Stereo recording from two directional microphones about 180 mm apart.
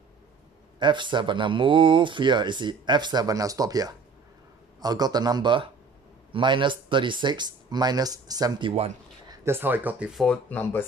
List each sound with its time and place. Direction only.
0.7 s speech: 25° right (ahead or behind)
9.3 s speech: 15° right (ahead or behind); by 10.9 s 10° left (ahead or behind)